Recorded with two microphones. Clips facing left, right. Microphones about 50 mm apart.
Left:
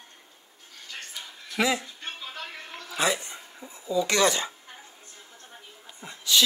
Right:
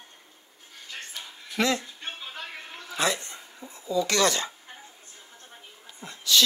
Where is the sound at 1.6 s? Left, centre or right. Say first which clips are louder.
Even; centre.